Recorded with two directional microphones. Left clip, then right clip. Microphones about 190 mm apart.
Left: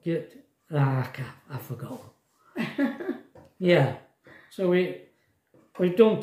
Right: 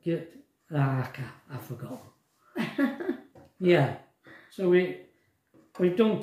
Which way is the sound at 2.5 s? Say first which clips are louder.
Even; 20° left (ahead or behind).